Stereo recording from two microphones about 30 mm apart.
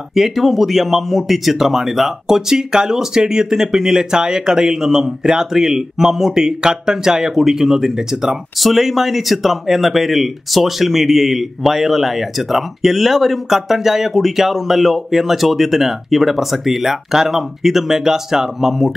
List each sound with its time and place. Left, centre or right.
0.1 s speech: centre
8.5 s speech: centre
18.7 s speech: centre